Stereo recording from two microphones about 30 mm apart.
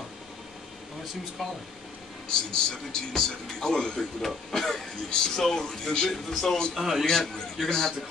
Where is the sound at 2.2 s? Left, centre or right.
Left.